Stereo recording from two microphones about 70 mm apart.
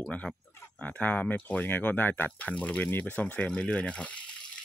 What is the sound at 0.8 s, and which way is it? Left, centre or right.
Speech, left.